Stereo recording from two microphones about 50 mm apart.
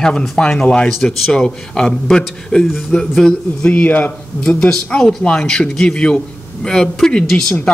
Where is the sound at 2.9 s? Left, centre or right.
Centre.